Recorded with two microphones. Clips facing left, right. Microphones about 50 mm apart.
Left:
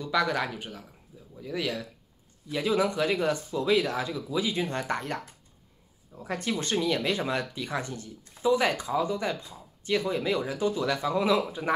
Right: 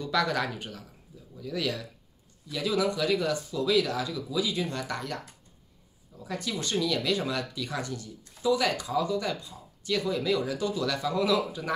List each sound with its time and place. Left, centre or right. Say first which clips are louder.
0.0 s speech: left 1 dB; centre
2.4 s speech: left 2 dB; left